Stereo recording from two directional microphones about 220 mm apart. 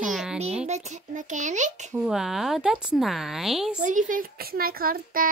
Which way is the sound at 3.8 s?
35° right (ahead or behind).